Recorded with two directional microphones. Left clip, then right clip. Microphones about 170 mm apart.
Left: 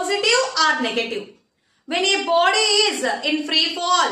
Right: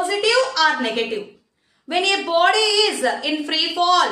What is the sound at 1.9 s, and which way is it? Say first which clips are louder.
A woman's voice: even; 20° right (ahead or behind).